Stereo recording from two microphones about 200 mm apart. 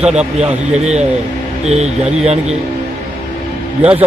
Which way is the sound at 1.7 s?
35° right (ahead or behind).